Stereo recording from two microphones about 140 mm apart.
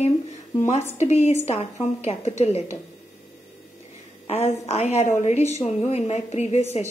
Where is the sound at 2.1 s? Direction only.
50° left (ahead or behind).